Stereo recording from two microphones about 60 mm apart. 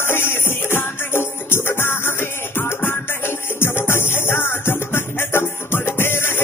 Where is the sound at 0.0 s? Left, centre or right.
Left.